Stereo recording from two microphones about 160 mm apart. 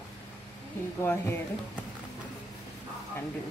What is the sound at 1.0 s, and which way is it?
Speech, 15° left (ahead or behind).